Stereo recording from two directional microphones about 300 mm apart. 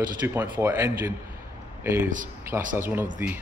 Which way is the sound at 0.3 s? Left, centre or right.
Centre.